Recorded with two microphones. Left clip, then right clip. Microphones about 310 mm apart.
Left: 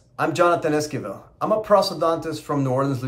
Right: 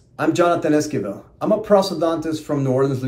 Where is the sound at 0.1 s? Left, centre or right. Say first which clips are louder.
Right 1 dB; centre.